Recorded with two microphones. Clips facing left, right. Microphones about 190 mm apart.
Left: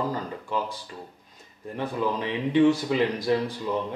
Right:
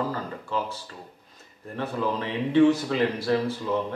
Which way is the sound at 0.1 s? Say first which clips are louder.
Even; 15° left (ahead or behind).